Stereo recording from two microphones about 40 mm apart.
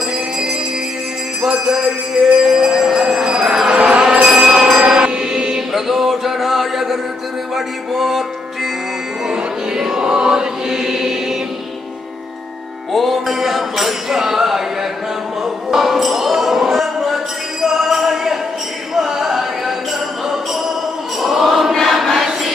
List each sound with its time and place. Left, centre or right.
1.4 s jingle bell: centre
2.4 s train: centre
4.2 s a sound: centre
4.8 s mantra: right
5.7 s a sound: centre
7.5 s music: centre
9.3 s chant: centre
12.9 s music: centre
21.2 s chant: centre